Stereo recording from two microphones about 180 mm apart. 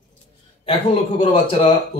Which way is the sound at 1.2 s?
30° left (ahead or behind).